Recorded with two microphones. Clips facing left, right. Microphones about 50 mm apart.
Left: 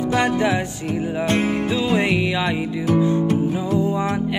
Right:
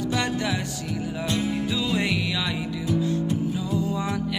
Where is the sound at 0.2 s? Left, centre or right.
Left.